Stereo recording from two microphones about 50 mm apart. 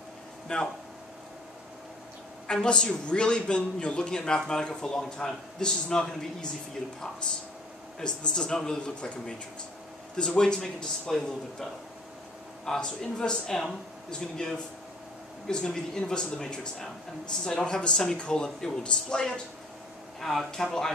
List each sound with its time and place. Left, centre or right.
0.5 s speech: left
2.4 s a man's voice: centre
8.0 s a man's voice: centre
10.1 s a man's voice: centre